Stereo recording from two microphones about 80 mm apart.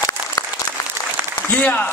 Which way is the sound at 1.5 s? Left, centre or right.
Centre.